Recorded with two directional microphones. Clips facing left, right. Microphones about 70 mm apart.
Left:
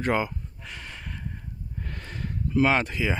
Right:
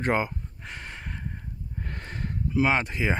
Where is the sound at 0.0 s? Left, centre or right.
Right.